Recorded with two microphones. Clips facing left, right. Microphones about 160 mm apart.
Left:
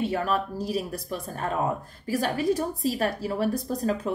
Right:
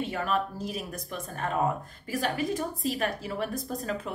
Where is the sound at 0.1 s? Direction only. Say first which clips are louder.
Left 3 dB; 40° left (ahead or behind).